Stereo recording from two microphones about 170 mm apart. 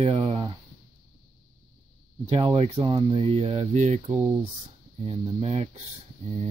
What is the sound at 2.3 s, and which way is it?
Speech, 25° right (ahead or behind).